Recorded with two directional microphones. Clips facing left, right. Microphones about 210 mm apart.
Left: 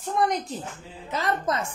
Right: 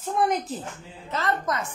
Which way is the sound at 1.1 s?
15° left (ahead or behind).